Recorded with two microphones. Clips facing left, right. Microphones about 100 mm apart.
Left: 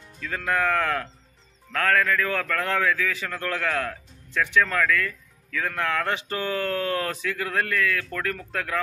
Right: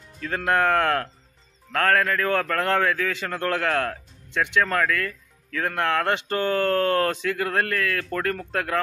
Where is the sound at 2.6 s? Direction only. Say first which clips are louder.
Right 2 dB; 50° right (ahead or behind).